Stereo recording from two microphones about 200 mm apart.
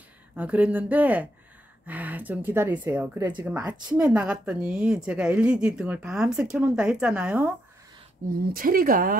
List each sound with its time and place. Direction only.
0.4 s a woman's voice: 10° right (ahead or behind)
8.3 s speech: 45° right (ahead or behind)